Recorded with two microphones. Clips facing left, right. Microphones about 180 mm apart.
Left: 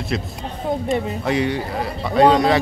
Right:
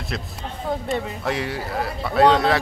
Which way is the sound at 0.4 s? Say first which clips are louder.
Left 3 dB; 15° left (ahead or behind).